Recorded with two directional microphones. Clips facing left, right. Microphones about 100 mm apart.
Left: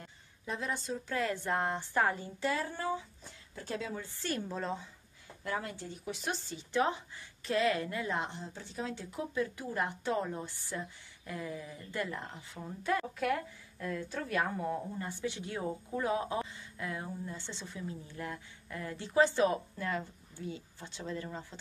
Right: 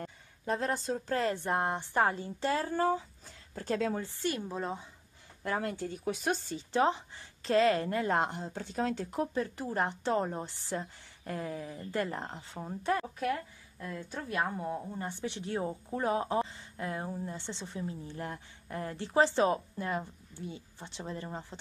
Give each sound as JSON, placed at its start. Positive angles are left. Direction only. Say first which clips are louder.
{"t": 0.0, "sound": "speech", "louder": "right 7 dB", "side_deg": -40}
{"t": 4.3, "sound": "a woman's voice", "louder": "even", "side_deg": -10}
{"t": 5.4, "sound": "speech", "louder": "right 4 dB", "side_deg": -45}
{"t": 6.7, "sound": "speech", "louder": "right 3 dB", "side_deg": -30}
{"t": 9.3, "sound": "speech", "louder": "right 1 dB", "side_deg": -35}
{"t": 13.3, "sound": "speech", "louder": "even", "side_deg": -20}